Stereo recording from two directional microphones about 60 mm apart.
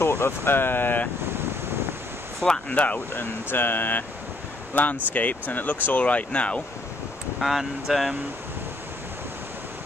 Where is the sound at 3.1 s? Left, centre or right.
Left.